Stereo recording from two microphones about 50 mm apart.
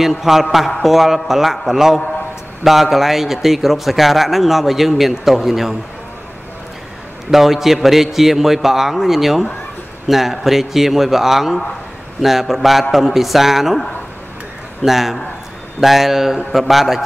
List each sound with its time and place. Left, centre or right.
0.0 s a man's voice: centre
7.2 s a man's voice: centre
14.8 s a man's voice: centre